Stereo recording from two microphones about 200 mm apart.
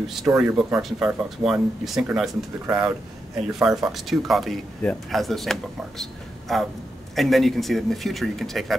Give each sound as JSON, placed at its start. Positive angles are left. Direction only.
{"t": 0.0, "sound": "speech", "side_deg": 0}
{"t": 2.6, "sound": "speech", "side_deg": -15}
{"t": 3.5, "sound": "speech", "side_deg": 0}